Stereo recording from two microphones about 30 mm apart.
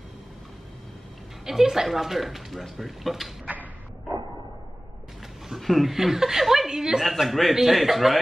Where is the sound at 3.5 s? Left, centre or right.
Right.